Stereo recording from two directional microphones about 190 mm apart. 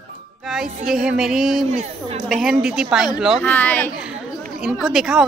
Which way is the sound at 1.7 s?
35° right (ahead or behind).